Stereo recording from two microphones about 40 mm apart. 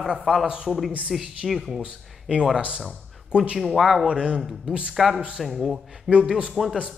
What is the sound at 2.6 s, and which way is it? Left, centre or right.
Speech, right.